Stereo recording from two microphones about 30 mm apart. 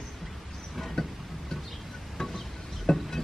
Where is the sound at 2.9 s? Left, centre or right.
Left.